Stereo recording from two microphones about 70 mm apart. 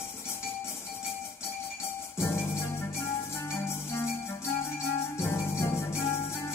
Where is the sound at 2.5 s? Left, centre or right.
Left.